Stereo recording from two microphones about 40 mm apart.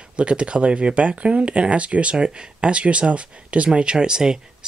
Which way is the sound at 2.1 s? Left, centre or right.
Right.